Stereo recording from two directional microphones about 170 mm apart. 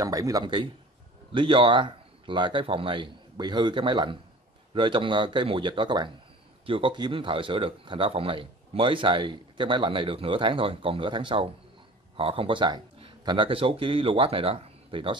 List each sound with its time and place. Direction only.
0.0 s speech: 20° right (ahead or behind)